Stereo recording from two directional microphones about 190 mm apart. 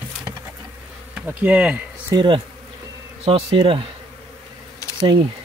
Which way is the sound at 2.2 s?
25° right (ahead or behind).